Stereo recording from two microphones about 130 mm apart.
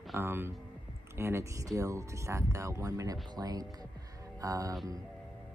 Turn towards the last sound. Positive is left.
turn(degrees=-25)  # may be behind; listen again after turning